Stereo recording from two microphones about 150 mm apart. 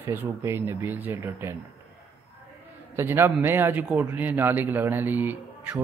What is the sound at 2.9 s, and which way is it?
Speech, 15° right (ahead or behind).